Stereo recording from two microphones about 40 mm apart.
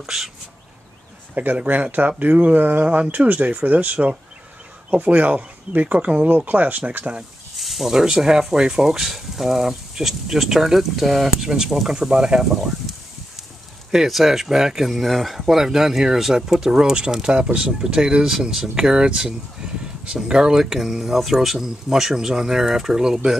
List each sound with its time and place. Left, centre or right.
0.0 s speech: centre
1.3 s speech: right
1.6 s speech: right
6.3 s speech: right
7.0 s speech: right
7.5 s snake: centre
7.9 s speech: centre
13.9 s speech: centre
14.9 s speech: centre
15.4 s speech: centre